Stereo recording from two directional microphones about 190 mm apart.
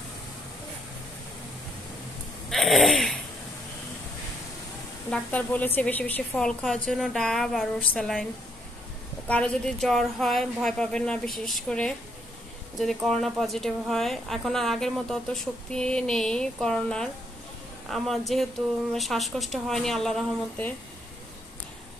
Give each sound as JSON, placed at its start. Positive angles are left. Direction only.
{"t": 2.5, "sound": "a sound", "side_deg": 0}
{"t": 5.1, "sound": "speech", "side_deg": 10}
{"t": 9.3, "sound": "speech", "side_deg": 5}